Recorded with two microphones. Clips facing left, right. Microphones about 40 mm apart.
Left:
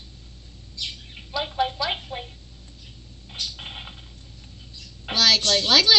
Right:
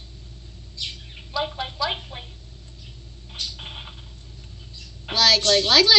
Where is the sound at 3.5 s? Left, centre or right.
Centre.